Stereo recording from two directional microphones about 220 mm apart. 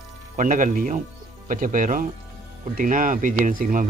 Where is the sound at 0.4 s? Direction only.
35° right (ahead or behind).